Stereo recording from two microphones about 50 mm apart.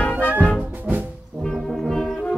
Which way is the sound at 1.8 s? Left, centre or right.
Centre.